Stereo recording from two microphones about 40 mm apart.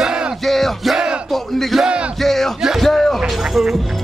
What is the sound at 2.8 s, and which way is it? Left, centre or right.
Music, centre.